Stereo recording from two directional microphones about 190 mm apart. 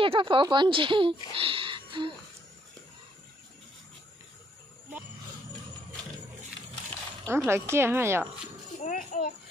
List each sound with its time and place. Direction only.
0.0 s speech: 25° right (ahead or behind)
1.4 s music: 30° right (ahead or behind)
7.2 s a woman's voice: 10° right (ahead or behind)
8.8 s a child's voice: 45° left (ahead or behind)